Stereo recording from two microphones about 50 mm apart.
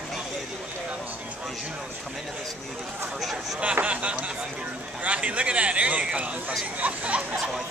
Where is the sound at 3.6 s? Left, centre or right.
Right.